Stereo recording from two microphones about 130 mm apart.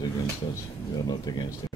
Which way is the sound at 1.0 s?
30° left (ahead or behind).